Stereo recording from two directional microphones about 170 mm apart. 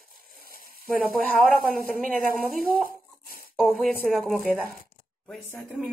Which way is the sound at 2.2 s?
55° right (ahead or behind).